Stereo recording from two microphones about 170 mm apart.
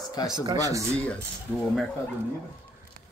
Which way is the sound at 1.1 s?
5° left (ahead or behind).